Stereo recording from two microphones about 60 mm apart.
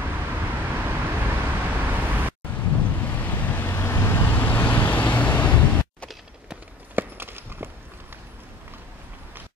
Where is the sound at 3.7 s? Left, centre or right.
Left.